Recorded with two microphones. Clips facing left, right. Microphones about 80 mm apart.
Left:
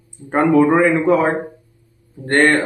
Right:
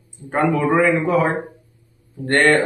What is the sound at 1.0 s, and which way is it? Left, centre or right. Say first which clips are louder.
Speech: left 3 dB; left.